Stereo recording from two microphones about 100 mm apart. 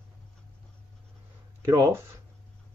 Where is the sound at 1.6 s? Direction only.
30° right (ahead or behind).